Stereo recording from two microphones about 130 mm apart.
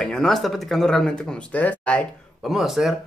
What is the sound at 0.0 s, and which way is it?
Speech, 5° left (ahead or behind).